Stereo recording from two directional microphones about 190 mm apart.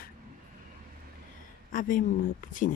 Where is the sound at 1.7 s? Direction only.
45° left (ahead or behind).